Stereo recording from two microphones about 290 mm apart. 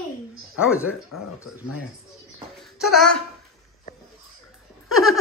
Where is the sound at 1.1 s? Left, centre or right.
Left.